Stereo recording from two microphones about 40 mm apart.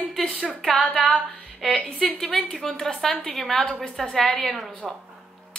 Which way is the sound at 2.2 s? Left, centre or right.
Centre.